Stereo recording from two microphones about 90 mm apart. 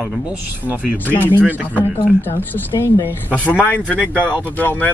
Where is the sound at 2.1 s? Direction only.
20° left (ahead or behind).